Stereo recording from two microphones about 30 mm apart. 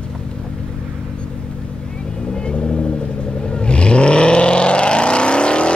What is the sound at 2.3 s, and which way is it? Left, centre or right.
Vehicle, left.